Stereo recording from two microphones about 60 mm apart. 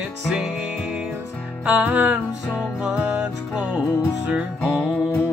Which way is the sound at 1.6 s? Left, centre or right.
Right.